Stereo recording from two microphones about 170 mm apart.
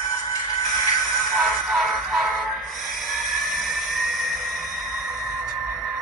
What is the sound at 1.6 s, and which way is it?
Music, centre (ahead or behind).